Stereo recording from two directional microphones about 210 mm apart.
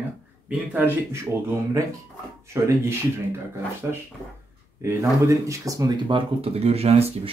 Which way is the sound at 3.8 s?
10° right (ahead or behind).